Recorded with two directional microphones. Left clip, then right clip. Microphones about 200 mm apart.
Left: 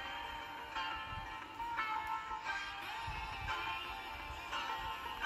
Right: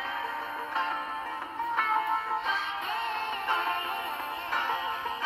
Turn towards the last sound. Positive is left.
turn(degrees=-40)  # may be behind; listen again after turning